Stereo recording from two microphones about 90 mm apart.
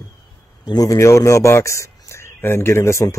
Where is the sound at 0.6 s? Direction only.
45° left (ahead or behind).